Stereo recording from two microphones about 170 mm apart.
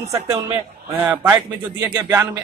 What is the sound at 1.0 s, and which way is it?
Speech, 10° right (ahead or behind).